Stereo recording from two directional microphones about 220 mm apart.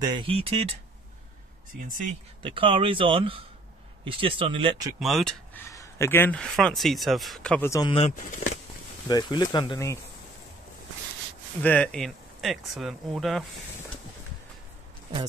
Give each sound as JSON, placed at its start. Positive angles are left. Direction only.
{"t": 0.0, "sound": "speech", "side_deg": -20}
{"t": 1.8, "sound": "speech", "side_deg": -35}
{"t": 2.4, "sound": "speech", "side_deg": -25}
{"t": 4.9, "sound": "speech", "side_deg": 0}
{"t": 5.7, "sound": "speech", "side_deg": 15}
{"t": 7.9, "sound": "speech", "side_deg": 30}
{"t": 9.1, "sound": "speech", "side_deg": 20}
{"t": 11.6, "sound": "speech", "side_deg": 5}